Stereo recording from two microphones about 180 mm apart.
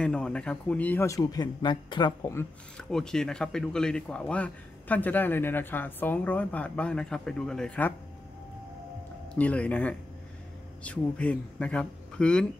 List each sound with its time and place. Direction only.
0.0 s speech: 5° left (ahead or behind); by 2.3 s 25° left (ahead or behind)
2.3 s speech: 5° left (ahead or behind)
9.3 s a man's voice: 5° left (ahead or behind)